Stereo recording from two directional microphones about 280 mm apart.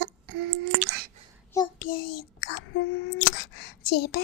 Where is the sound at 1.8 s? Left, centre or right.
Left.